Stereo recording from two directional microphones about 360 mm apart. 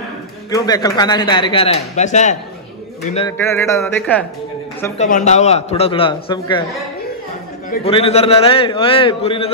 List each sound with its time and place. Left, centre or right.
0.5 s a man's voice: centre
4.9 s a man's voice: centre
7.7 s a man's voice: centre